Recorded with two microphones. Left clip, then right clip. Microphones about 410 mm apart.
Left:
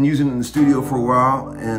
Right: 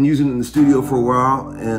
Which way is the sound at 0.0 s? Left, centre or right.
Centre.